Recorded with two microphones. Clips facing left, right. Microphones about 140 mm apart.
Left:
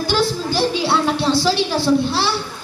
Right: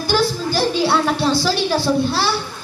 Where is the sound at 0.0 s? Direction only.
25° left (ahead or behind).